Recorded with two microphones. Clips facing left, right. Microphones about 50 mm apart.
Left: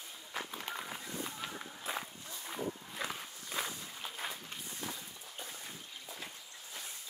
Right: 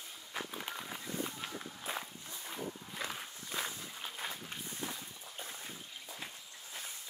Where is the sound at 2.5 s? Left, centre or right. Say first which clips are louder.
Left 3 dB; centre.